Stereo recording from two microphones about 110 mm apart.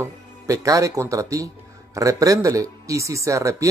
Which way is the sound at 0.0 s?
30° right (ahead or behind).